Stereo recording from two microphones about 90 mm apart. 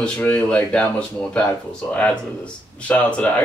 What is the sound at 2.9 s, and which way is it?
Speech, 20° left (ahead or behind).